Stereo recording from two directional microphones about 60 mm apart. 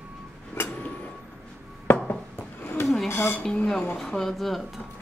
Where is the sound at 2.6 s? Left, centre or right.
Left.